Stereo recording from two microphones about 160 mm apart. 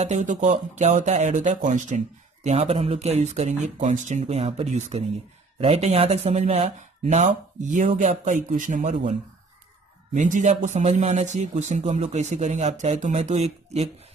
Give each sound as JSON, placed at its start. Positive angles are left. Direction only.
{"t": 0.0, "sound": "speech", "side_deg": -50}
{"t": 10.1, "sound": "speech", "side_deg": -50}